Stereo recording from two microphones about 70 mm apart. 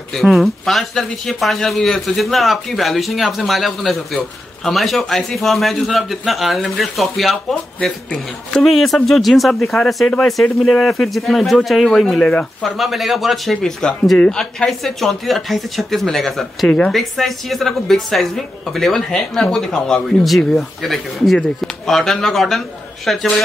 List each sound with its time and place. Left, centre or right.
0.1 s speech: centre
12.2 s a woman's voice: centre
12.6 s a woman's voice: centre
14.4 s speech: centre
16.6 s a woman's voice: centre
16.9 s speech: centre